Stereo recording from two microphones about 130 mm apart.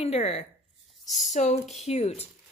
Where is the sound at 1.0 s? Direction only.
Centre (ahead or behind).